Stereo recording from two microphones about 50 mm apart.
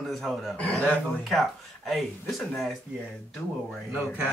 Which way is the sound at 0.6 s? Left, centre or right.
Left.